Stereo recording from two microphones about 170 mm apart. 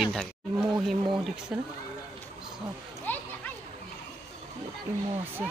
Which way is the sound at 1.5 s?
5° right (ahead or behind).